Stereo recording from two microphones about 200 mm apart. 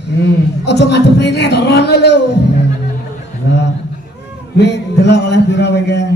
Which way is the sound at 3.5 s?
60° left (ahead or behind).